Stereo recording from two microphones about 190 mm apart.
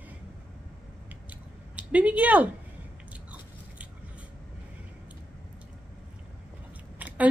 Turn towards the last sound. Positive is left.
turn(degrees=-10)  # may be behind; listen again after turning